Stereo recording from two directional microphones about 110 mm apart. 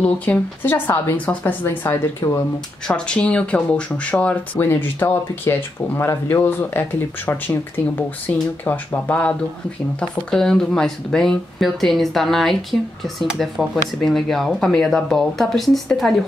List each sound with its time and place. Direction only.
0.0 s speech: 15° left (ahead or behind)
2.2 s speech: 30° left (ahead or behind)
2.9 s speech: 10° left (ahead or behind)